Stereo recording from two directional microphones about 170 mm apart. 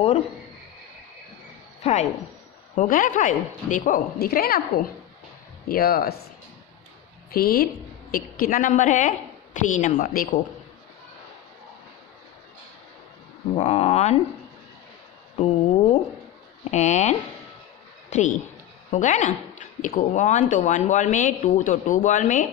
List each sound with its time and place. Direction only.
1.8 s speech: 40° left (ahead or behind); by 6.2 s 65° left (ahead or behind)
7.2 s a woman's voice: 65° left (ahead or behind)
13.6 s speech: 40° left (ahead or behind)
15.3 s a sound: 35° left (ahead or behind)
16.7 s speech: 45° left (ahead or behind)
18.1 s a woman's voice: 45° left (ahead or behind)